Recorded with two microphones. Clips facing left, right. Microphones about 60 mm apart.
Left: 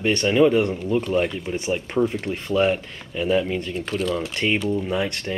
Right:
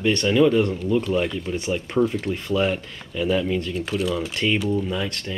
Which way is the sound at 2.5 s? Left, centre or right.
Centre.